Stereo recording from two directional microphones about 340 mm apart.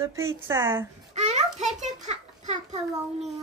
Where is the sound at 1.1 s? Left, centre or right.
Centre.